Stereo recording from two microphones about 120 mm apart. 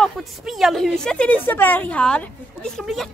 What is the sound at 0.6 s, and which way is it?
A woman's voice, centre (ahead or behind).